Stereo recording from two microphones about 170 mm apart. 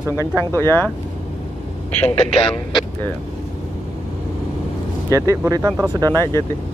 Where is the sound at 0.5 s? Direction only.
15° left (ahead or behind).